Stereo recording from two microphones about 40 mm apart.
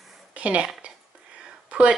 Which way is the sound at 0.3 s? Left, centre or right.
Right.